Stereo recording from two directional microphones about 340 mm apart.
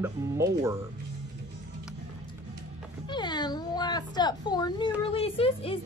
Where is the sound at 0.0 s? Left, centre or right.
Centre.